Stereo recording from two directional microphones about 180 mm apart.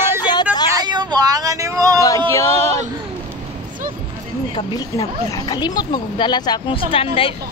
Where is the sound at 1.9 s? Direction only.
15° left (ahead or behind).